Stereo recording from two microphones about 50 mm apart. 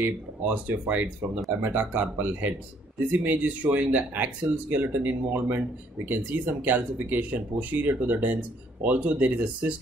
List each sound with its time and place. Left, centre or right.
0.0 s speech: right
1.6 s speech: right